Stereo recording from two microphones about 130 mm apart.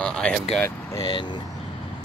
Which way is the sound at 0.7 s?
25° left (ahead or behind).